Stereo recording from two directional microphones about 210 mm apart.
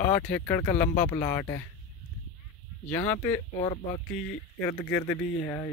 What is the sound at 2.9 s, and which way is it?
Speech, 10° left (ahead or behind).